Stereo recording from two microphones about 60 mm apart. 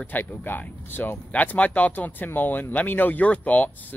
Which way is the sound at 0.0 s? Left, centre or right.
Left.